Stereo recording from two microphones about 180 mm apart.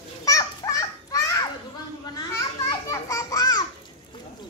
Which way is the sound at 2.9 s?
20° left (ahead or behind).